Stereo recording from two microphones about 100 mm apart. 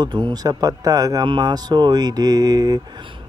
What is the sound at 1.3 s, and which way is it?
Mantra, 45° right (ahead or behind).